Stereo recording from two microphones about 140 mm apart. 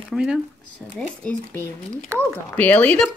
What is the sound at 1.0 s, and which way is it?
Speech, 10° left (ahead or behind).